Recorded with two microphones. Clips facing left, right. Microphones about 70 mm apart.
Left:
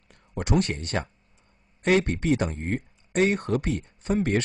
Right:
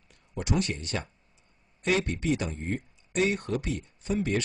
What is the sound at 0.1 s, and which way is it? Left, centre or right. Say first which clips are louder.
Speech: left 4 dB; left.